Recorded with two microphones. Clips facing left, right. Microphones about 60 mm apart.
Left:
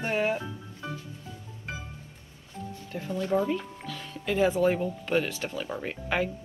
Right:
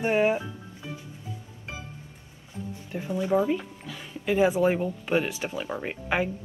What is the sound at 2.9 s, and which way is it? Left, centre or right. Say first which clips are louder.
A woman's voice: right 3 dB; centre.